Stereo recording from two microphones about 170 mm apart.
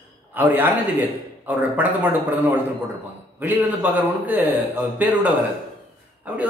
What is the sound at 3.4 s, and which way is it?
A man's voice, 10° right (ahead or behind).